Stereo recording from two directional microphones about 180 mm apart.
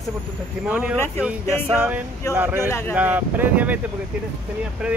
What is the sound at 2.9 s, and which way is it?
Speech, 10° right (ahead or behind).